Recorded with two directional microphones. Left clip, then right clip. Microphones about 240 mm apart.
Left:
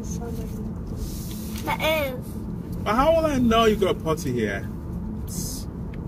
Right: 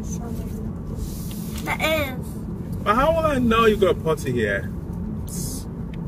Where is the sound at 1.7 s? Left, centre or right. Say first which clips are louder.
Right 1 dB; centre.